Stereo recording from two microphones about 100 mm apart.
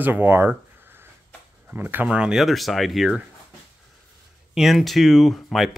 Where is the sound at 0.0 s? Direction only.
20° right (ahead or behind); by 3.2 s centre (ahead or behind).